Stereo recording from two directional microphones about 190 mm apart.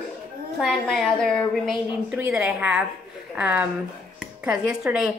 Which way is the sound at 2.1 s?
10° right (ahead or behind).